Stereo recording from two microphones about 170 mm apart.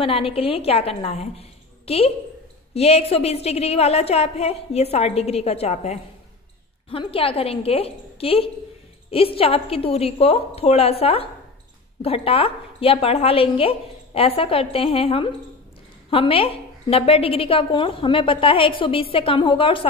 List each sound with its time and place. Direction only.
0.0 s a woman's voice: 35° left (ahead or behind)